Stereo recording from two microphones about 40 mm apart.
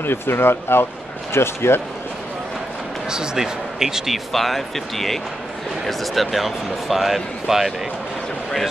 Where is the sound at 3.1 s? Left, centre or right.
Centre.